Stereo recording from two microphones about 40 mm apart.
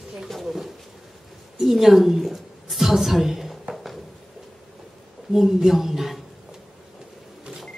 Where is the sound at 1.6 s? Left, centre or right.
Centre.